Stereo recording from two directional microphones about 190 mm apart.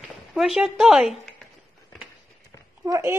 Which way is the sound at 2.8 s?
15° right (ahead or behind).